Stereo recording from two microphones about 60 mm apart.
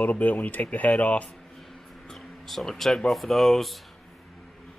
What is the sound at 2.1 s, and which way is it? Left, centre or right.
Speech, centre.